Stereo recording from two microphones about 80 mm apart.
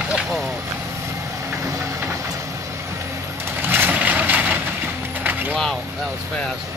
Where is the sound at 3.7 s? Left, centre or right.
Right.